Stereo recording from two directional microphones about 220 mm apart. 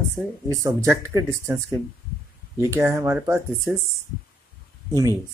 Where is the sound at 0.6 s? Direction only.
15° right (ahead or behind).